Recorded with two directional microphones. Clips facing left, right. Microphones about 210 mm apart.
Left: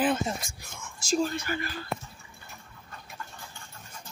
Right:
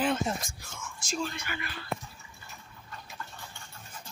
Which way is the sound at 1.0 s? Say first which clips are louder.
Left 7 dB; 35° left (ahead or behind).